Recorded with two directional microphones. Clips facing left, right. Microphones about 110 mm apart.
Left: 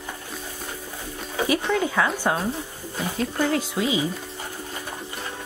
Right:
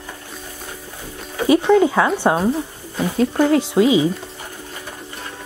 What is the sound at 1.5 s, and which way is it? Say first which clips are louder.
Speech: right 11 dB; 25° right (ahead or behind).